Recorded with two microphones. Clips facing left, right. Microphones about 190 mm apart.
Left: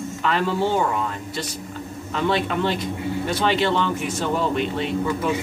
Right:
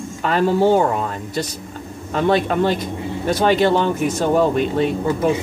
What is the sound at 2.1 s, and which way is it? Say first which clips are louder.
Speech: right 5 dB; 45° right (ahead or behind).